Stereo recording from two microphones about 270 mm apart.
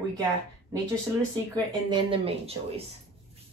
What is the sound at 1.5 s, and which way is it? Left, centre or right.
Speech, centre.